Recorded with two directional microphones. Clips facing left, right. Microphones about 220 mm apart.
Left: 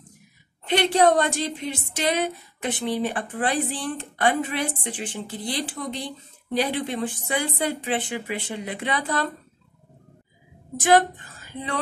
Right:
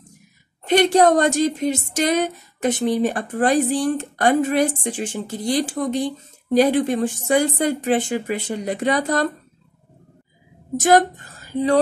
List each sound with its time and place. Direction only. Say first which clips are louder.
0.7 s a woman's voice: right 4 dB; 45° right (ahead or behind)
10.8 s speech: right 3 dB; 45° right (ahead or behind)